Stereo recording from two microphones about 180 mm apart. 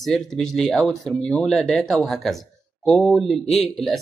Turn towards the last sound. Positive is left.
turn(degrees=0)  # may be behind; listen again after turning